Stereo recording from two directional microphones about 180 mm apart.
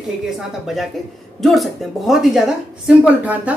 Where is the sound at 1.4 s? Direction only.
Centre (ahead or behind).